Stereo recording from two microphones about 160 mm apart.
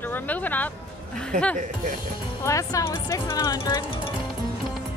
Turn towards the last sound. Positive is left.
turn(degrees=25)  # may be behind; listen again after turning